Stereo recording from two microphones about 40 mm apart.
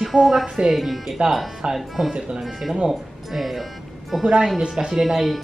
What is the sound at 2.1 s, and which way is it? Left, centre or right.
Speech, right.